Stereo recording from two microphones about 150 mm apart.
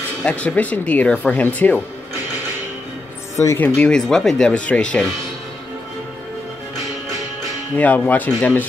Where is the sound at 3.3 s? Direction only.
20° left (ahead or behind).